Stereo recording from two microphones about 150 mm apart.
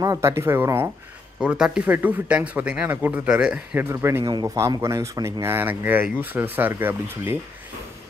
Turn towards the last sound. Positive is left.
turn(degrees=-15)  # may be behind; listen again after turning